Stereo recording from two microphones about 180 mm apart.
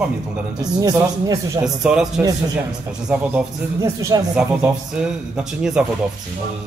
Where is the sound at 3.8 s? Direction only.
20° right (ahead or behind).